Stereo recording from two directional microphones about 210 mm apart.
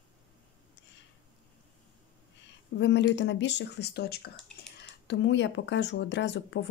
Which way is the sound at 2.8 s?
55° left (ahead or behind).